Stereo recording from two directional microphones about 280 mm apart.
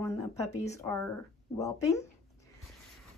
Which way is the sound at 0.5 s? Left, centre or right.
Left.